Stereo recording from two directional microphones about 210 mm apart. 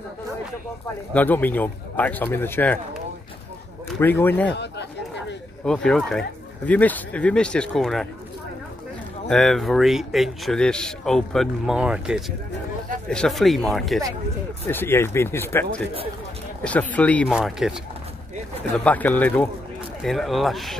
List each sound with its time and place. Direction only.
1.1 s a man's voice: 10° left (ahead or behind)
4.0 s a man's voice: 10° left (ahead or behind)
4.5 s a sound: 55° left (ahead or behind)
5.7 s speech: 5° left (ahead or behind)
9.3 s a man's voice: centre (ahead or behind)
16.6 s a man's voice: 5° left (ahead or behind)
18.9 s a man's voice: 10° left (ahead or behind)